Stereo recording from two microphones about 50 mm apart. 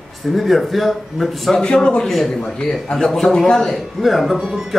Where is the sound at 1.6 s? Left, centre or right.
Centre.